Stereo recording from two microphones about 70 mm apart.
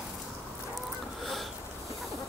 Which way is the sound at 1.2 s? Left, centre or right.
Centre.